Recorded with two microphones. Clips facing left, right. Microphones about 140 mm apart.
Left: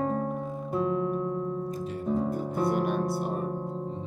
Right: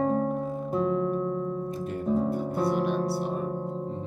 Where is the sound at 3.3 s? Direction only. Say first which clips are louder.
Right 1 dB; centre (ahead or behind).